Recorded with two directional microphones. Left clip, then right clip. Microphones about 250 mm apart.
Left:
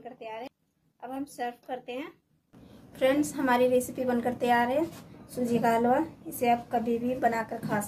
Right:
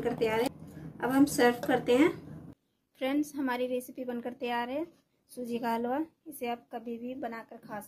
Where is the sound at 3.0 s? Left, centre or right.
Right.